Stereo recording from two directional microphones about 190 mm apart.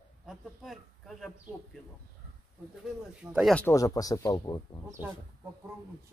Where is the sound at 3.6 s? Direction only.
15° left (ahead or behind).